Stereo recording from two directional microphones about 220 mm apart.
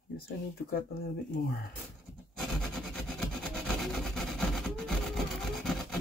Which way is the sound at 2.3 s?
Centre (ahead or behind).